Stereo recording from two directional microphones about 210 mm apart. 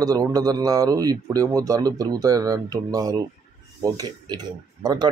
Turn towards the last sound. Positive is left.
turn(degrees=-20)  # may be behind; listen again after turning